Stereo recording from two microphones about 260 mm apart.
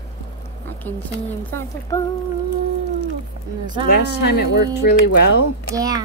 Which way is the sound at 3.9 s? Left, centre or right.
Left.